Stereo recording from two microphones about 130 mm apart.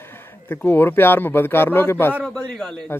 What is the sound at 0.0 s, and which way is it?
Speech, 15° left (ahead or behind).